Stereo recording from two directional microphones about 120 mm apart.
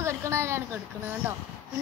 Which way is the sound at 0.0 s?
25° right (ahead or behind).